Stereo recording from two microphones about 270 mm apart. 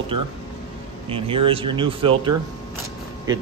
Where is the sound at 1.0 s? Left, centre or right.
Centre.